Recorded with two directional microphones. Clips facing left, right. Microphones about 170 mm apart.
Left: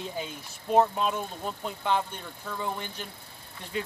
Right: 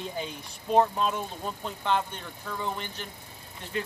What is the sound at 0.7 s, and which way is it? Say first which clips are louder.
Speech: even; 10° left (ahead or behind).